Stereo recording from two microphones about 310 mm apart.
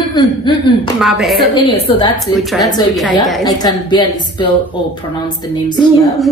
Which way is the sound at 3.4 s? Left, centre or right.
Centre.